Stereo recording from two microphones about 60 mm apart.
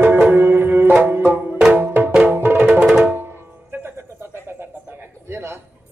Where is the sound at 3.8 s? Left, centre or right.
Right.